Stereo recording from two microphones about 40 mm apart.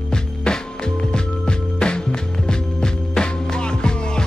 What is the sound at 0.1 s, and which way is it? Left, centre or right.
Music, centre.